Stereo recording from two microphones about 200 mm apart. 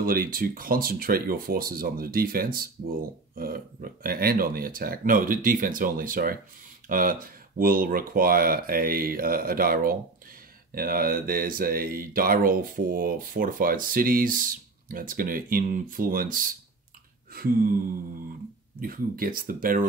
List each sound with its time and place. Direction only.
0.0 s speech: 45° right (ahead or behind)
18.8 s speech: 45° right (ahead or behind)